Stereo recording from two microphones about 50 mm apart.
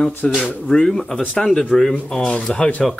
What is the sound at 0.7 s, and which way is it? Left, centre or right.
Speech, centre.